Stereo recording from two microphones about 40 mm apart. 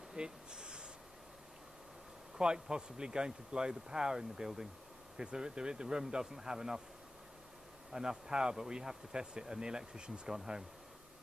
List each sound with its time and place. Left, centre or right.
0.1 s a sound: right
2.3 s speech: centre
7.9 s speech: centre